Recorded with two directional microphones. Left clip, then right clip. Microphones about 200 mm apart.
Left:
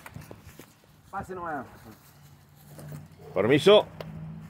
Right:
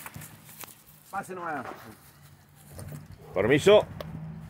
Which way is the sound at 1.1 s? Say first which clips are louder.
Even; 25° right (ahead or behind).